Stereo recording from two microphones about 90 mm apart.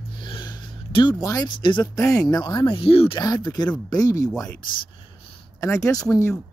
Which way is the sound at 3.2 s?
50° left (ahead or behind).